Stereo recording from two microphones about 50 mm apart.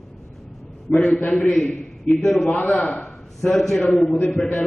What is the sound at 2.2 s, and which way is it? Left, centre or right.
Speech, centre.